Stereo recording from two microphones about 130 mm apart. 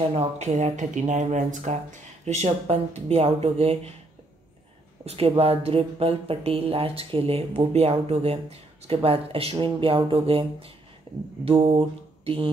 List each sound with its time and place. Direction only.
0.1 s speech: 60° right (ahead or behind)
5.0 s speech: 50° right (ahead or behind)